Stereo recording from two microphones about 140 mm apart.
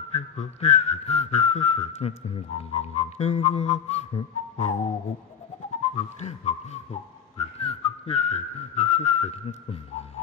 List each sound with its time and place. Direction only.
0.1 s whistling: 50° left (ahead or behind)
6.2 s whistling: 50° left (ahead or behind)